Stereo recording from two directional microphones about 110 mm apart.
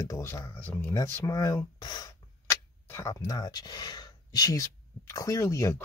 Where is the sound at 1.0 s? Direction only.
25° left (ahead or behind).